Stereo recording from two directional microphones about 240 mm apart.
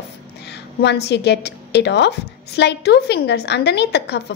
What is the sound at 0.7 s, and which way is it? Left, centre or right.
A woman's voice, left.